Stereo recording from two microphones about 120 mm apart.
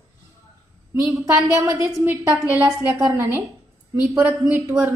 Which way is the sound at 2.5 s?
10° right (ahead or behind).